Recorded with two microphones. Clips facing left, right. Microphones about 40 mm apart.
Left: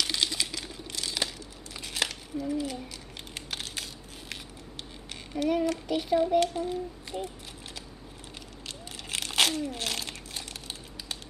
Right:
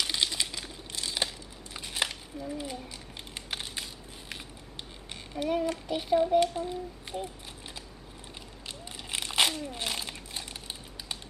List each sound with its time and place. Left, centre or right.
0.0 s a sound: centre
3.5 s crushing: centre
5.4 s child singing: centre
6.6 s speech: centre
8.8 s crumpling: centre
9.8 s a sound: centre